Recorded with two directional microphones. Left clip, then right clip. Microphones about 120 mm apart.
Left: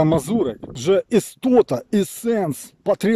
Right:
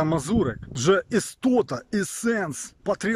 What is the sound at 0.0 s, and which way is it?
A man's voice, 25° left (ahead or behind).